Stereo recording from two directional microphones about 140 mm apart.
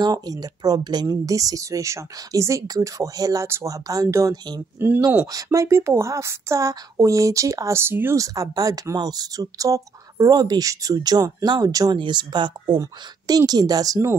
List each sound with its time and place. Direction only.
0.0 s speech: 25° right (ahead or behind)